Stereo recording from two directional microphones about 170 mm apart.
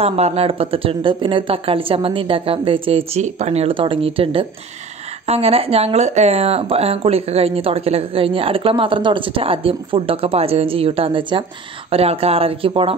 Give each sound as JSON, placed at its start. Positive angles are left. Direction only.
{"t": 0.0, "sound": "speech", "side_deg": -35}